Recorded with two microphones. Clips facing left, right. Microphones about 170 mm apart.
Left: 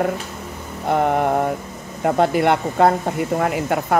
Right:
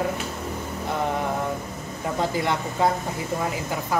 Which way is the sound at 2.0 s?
65° left (ahead or behind).